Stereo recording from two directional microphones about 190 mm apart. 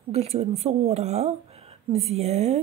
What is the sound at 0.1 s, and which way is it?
A woman's voice, 35° right (ahead or behind).